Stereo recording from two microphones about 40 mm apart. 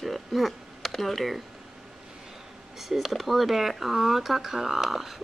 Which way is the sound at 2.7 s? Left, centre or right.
Centre.